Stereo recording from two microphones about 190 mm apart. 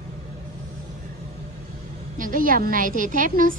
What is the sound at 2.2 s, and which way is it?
A woman's voice, 45° right (ahead or behind).